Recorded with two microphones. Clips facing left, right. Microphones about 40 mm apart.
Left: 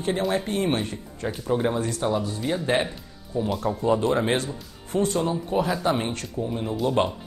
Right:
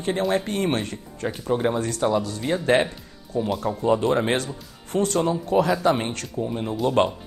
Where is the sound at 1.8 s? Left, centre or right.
Right.